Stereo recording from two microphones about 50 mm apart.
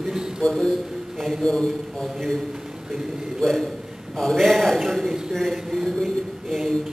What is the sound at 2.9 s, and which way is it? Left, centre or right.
A man's voice, centre.